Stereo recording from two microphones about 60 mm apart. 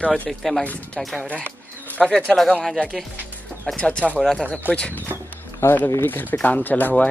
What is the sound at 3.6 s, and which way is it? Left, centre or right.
Speech, centre.